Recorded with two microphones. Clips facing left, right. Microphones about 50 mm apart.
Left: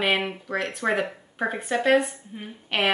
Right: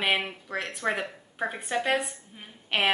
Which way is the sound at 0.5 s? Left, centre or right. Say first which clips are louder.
Left 3 dB; centre.